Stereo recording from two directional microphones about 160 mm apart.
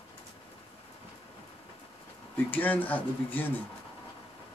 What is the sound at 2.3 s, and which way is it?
Speech, 10° left (ahead or behind).